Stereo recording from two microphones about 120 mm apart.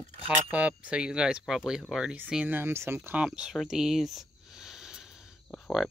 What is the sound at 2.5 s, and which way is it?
Speech, 20° right (ahead or behind).